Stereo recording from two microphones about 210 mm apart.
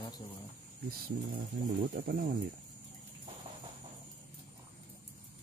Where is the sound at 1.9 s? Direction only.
40° right (ahead or behind).